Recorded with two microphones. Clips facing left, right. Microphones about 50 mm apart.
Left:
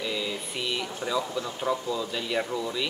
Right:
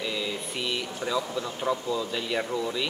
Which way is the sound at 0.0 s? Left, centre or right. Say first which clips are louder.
Even; centre.